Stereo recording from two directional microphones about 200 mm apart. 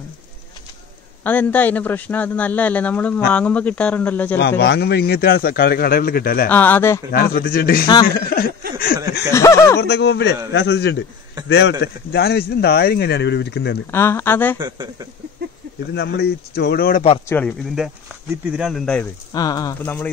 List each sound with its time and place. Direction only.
1.2 s a man's voice: 10° left (ahead or behind)
4.4 s a man's voice: 55° left (ahead or behind)
6.5 s a man's voice: 10° left (ahead or behind)
7.1 s a man's voice: 45° left (ahead or behind)
7.8 s a man's voice: 20° left (ahead or behind)
8.3 s a man's voice: 50° left (ahead or behind)
9.3 s a man's voice: 15° left (ahead or behind)
9.8 s a man's voice: 55° left (ahead or behind)
13.8 s a man's voice: 10° left (ahead or behind)
14.6 s speech: 20° right (ahead or behind)
15.9 s a man's voice: 55° left (ahead or behind)
17.3 s speech: 5° left (ahead or behind)
19.3 s a man's voice: 20° left (ahead or behind)